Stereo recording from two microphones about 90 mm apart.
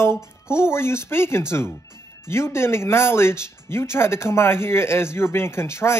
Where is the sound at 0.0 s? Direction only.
30° left (ahead or behind).